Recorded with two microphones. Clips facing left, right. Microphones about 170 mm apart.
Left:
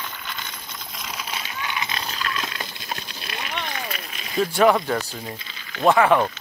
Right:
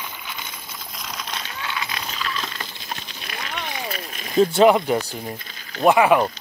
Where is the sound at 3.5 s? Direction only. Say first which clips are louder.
Even; 10° right (ahead or behind).